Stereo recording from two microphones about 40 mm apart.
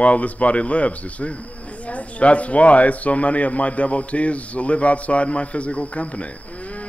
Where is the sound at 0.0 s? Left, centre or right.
Left.